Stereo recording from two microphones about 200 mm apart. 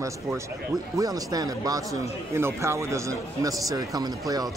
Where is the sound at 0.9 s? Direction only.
20° right (ahead or behind).